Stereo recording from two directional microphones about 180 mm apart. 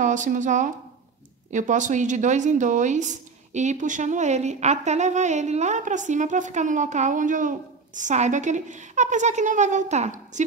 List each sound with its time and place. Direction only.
0.0 s speech: 45° right (ahead or behind)